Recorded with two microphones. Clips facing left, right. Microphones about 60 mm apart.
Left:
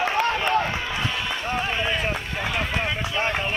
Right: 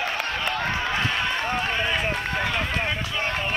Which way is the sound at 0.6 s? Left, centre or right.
Right.